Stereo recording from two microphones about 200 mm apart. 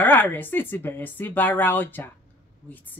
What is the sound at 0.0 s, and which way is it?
A woman's voice, 10° left (ahead or behind).